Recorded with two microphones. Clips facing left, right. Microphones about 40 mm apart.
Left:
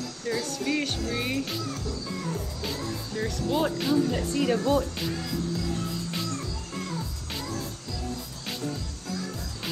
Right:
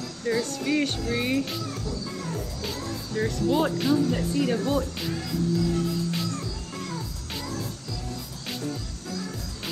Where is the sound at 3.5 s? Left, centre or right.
Centre.